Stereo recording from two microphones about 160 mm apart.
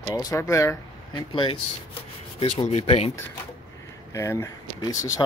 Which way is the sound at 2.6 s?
40° left (ahead or behind).